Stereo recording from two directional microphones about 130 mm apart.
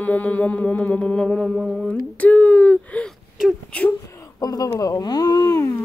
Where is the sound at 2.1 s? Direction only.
10° left (ahead or behind).